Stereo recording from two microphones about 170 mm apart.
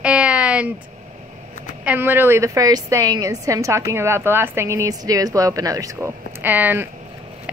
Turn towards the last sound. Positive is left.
turn(degrees=-10)  # may be behind; listen again after turning